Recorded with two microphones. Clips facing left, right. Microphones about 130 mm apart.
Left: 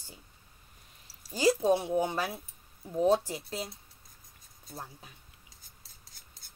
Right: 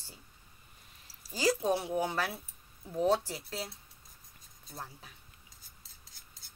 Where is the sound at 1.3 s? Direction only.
20° left (ahead or behind).